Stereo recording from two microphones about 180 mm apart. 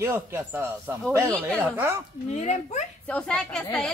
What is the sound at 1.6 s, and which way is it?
Speech, 10° right (ahead or behind).